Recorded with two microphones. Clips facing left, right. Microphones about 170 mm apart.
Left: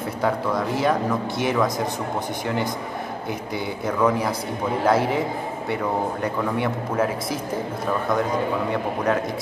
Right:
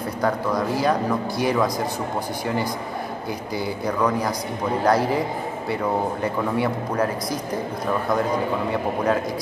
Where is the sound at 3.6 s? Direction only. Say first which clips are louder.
Left 1 dB; 5° left (ahead or behind).